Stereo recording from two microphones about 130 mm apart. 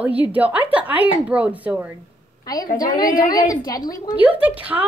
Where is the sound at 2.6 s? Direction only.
90° left.